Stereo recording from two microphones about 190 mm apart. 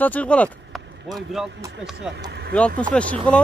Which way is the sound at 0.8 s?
70° right (ahead or behind).